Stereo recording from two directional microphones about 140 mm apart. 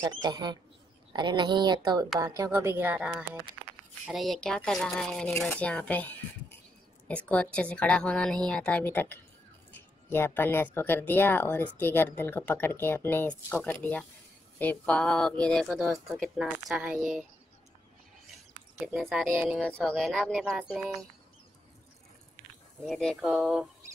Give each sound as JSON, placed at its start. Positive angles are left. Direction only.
{"t": 0.0, "sound": "speech", "side_deg": -30}
{"t": 18.9, "sound": "speech", "side_deg": 0}
{"t": 19.3, "sound": "speech", "side_deg": -15}
{"t": 19.6, "sound": "speech", "side_deg": 5}
{"t": 22.8, "sound": "speech", "side_deg": 5}